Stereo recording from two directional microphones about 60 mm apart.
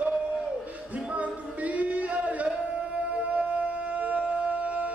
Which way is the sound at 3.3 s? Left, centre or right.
Right.